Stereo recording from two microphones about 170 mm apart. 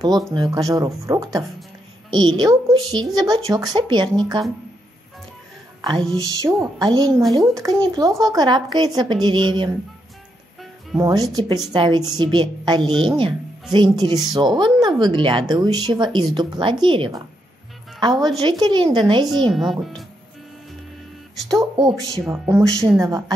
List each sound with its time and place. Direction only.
0.3 s speech: 20° right (ahead or behind)
5.8 s speech: 25° right (ahead or behind)
11.0 s speech: 20° right (ahead or behind)
19.5 s speech: centre (ahead or behind)
21.5 s speech: 20° right (ahead or behind)